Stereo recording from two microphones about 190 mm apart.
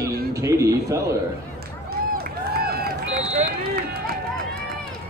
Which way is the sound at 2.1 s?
55° right (ahead or behind).